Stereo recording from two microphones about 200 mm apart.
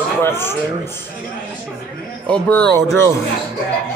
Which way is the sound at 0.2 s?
10° left (ahead or behind).